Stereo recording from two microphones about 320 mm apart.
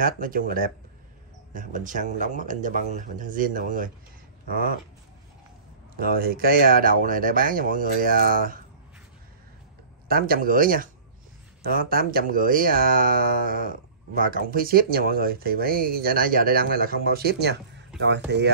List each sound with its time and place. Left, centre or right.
0.0 s speech: right
5.9 s speech: right
10.0 s speech: right